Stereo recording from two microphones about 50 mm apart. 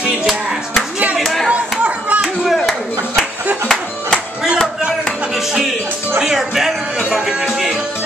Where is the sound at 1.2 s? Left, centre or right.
Centre.